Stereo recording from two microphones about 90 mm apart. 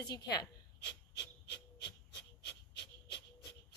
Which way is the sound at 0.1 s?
50° left (ahead or behind).